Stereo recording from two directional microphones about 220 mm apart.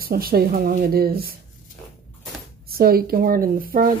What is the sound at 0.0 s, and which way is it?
Speech, 40° right (ahead or behind).